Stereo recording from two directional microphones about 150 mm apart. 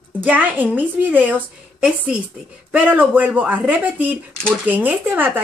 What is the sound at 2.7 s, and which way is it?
Speech, 10° right (ahead or behind).